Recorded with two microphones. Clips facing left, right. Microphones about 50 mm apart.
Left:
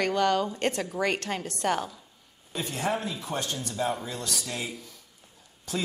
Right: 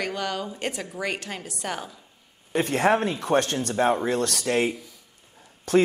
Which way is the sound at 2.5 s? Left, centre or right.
Right.